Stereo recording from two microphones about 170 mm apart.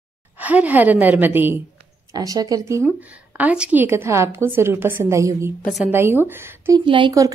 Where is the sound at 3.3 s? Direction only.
10° right (ahead or behind).